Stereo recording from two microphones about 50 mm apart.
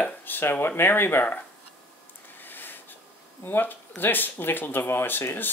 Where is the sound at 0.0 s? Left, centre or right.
Left.